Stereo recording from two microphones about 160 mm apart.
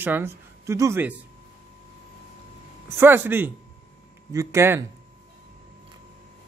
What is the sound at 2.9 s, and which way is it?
A man's voice, 15° right (ahead or behind).